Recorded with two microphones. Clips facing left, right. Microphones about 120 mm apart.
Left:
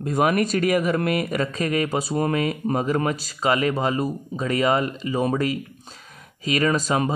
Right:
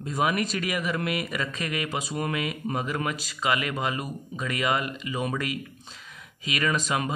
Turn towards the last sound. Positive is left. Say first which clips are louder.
# left 6 dB
turn(degrees=40)  # may be behind; listen again after turning